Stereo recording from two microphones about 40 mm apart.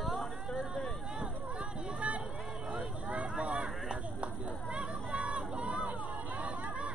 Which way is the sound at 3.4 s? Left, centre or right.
Right.